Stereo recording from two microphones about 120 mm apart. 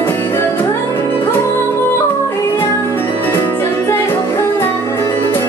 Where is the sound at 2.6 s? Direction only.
20° left (ahead or behind).